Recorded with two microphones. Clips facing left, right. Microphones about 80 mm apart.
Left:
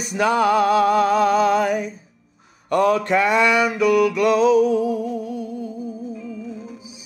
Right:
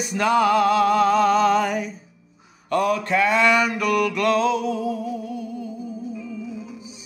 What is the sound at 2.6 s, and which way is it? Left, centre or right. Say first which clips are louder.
Mantra: left 4 dB; left.